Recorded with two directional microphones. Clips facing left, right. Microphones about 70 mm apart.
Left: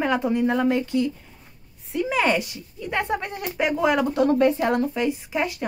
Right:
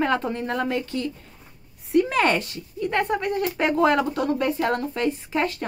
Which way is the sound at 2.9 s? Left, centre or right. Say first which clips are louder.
Right 2 dB; left.